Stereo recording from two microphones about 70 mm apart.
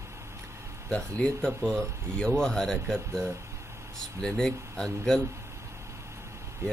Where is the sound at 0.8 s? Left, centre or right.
Centre.